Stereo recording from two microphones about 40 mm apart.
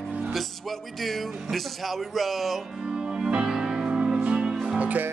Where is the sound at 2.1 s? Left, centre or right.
Centre.